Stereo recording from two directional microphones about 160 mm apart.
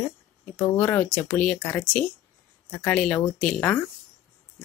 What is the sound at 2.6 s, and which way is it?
A woman's voice, 10° left (ahead or behind).